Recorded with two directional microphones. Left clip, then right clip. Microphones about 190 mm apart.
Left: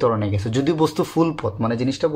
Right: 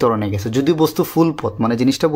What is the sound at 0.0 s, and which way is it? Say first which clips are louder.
Speech: right 3 dB; 25° right (ahead or behind).